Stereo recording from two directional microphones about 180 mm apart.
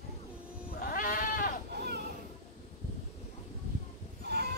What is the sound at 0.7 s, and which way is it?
Goat, 55° left (ahead or behind).